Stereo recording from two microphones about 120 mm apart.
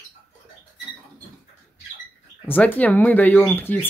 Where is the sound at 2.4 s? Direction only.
15° left (ahead or behind).